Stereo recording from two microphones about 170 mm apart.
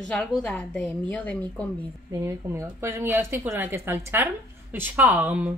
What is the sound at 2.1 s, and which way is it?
A woman's voice, 15° right (ahead or behind).